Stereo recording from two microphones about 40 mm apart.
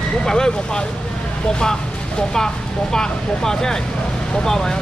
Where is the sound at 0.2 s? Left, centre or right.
Centre.